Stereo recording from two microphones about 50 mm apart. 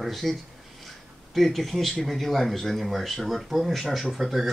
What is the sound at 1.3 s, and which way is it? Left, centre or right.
Speech, centre.